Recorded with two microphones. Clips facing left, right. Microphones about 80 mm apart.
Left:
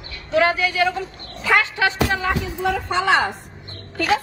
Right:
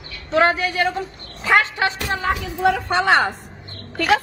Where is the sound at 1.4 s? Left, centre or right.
Right.